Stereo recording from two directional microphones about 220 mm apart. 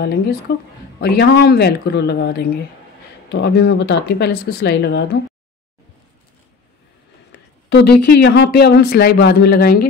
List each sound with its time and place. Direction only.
0.0 s speech: 45° left (ahead or behind)
7.7 s speech: 50° left (ahead or behind)